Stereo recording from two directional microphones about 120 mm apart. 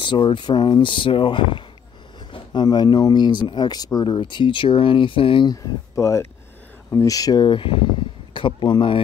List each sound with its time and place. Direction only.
0.0 s speech: 40° left (ahead or behind)
5.9 s speech: 25° left (ahead or behind)
7.4 s speech: 45° left (ahead or behind)